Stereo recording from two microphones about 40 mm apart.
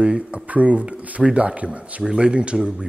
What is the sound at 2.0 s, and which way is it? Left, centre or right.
Speech, centre.